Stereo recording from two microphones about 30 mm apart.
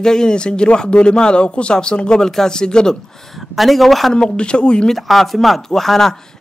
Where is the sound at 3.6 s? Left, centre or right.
Centre.